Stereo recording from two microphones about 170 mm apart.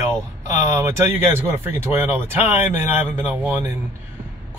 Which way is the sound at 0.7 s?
15° right (ahead or behind).